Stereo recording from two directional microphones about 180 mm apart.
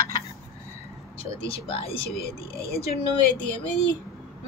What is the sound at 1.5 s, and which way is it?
Speech, 30° left (ahead or behind).